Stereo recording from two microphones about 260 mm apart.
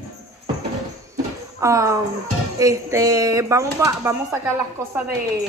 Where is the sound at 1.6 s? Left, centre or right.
Centre.